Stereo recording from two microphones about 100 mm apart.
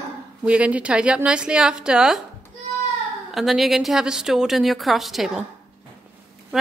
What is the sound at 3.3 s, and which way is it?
A woman's voice, centre (ahead or behind).